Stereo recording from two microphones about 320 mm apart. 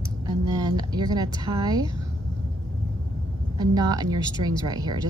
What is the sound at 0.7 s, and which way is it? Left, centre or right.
Speech, centre.